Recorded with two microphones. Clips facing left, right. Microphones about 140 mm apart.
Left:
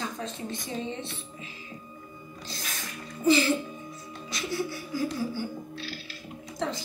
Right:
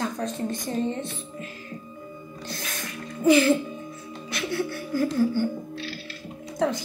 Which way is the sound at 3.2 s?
55° right (ahead or behind).